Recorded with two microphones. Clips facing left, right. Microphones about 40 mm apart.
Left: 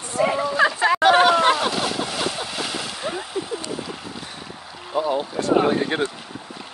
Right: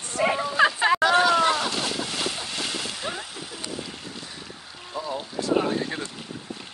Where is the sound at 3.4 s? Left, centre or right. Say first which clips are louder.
Left 11 dB; centre.